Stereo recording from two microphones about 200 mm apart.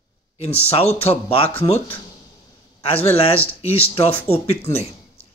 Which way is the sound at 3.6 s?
30° left (ahead or behind).